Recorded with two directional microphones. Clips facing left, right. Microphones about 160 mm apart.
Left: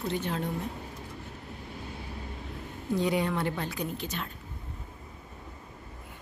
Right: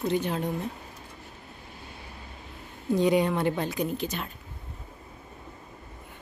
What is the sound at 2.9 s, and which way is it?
Speech, 20° right (ahead or behind).